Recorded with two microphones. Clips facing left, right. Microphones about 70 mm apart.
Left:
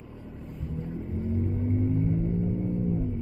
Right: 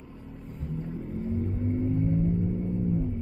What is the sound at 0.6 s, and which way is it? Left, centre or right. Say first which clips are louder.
Vehicle: even; centre.